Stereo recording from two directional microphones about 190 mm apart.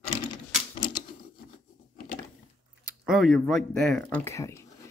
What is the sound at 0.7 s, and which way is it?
Patter, 25° left (ahead or behind).